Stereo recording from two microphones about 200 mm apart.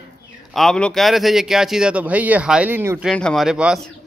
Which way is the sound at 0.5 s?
Centre (ahead or behind).